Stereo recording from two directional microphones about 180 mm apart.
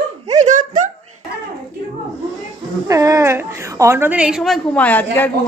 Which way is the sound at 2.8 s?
20° right (ahead or behind).